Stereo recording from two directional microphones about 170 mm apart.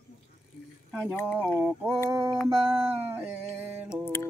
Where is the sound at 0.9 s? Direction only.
10° left (ahead or behind).